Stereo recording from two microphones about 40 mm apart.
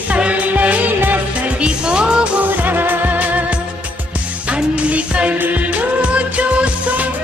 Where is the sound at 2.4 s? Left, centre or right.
Right.